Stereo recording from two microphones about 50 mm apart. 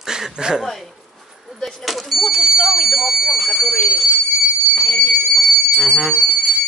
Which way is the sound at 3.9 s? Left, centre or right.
Centre.